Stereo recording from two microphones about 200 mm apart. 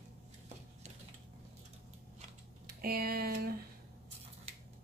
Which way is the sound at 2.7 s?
50° right (ahead or behind).